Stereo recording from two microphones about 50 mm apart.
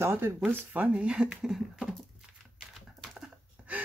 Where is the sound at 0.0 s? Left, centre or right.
Right.